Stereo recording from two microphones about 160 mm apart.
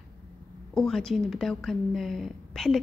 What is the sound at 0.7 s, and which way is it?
Speech, 5° left (ahead or behind).